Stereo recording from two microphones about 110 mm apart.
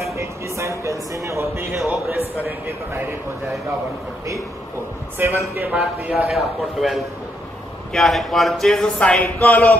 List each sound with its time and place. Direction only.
0.1 s speech: 25° right (ahead or behind)
2.9 s speech: 20° right (ahead or behind)
5.2 s speech: 20° right (ahead or behind)
5.8 s speech: 10° right (ahead or behind); by 9.7 s 15° left (ahead or behind)